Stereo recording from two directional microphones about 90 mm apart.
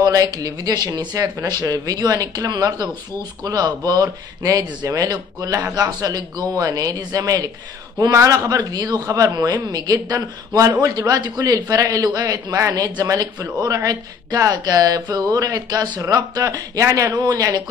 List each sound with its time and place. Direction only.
0.0 s a man's voice: 45° right (ahead or behind)